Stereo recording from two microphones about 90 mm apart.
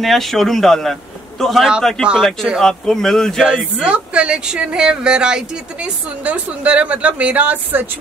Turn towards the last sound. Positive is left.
turn(degrees=-20)  # may be behind; listen again after turning